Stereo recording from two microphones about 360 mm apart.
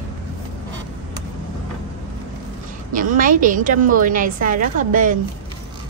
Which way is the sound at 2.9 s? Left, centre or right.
Right.